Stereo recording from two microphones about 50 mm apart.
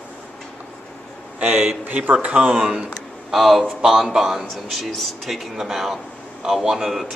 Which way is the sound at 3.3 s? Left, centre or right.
Centre.